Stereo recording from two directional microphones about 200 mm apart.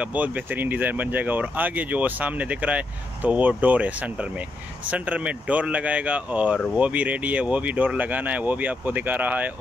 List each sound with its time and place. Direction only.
0.0 s speech: 5° right (ahead or behind)